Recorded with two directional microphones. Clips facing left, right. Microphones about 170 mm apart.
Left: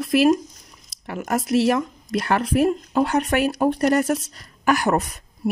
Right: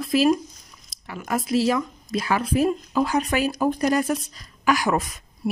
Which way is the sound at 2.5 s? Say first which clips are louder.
Left 2 dB; 60° left (ahead or behind).